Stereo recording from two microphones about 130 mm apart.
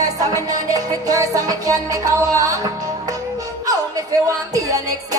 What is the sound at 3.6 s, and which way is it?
Music, 25° right (ahead or behind).